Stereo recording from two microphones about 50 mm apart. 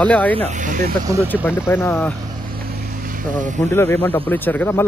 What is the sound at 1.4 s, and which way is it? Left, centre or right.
Speech, left.